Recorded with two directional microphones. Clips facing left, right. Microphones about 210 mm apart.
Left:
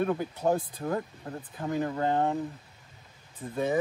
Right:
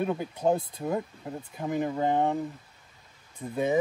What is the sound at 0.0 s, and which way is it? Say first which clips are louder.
Speech: even; 15° right (ahead or behind).